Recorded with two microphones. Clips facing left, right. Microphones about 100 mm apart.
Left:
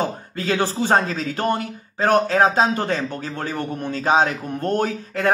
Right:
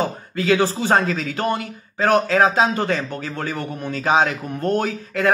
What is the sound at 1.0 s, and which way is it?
A man's voice, 30° left (ahead or behind).